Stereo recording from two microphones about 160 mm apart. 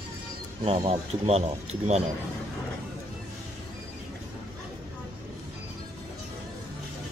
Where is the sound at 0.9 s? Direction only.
40° right (ahead or behind).